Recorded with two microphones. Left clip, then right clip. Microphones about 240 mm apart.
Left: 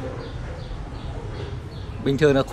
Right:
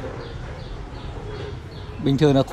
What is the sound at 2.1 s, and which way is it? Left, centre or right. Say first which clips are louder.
Speech: even; right.